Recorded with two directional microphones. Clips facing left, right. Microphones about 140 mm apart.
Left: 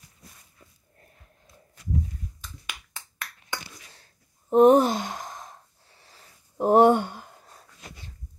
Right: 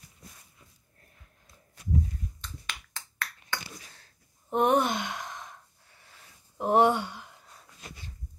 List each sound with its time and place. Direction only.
2.4 s finger snapping: 10° left (ahead or behind)
4.5 s sigh: 35° left (ahead or behind)